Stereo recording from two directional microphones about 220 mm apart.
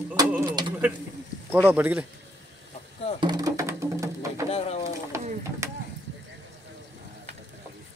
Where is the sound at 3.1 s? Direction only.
20° right (ahead or behind).